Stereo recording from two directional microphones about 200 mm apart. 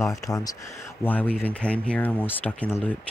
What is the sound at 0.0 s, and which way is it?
Speech, 15° left (ahead or behind).